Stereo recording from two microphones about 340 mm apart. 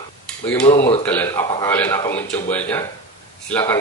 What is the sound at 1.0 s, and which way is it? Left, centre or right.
A man's voice, centre.